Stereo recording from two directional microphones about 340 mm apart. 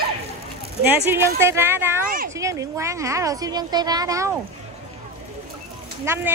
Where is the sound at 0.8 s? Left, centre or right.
Centre.